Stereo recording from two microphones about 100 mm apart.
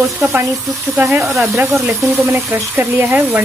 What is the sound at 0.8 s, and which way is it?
Speech, 25° right (ahead or behind).